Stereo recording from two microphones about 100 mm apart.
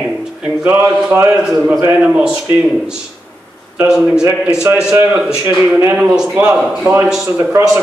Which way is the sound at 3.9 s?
5° right (ahead or behind).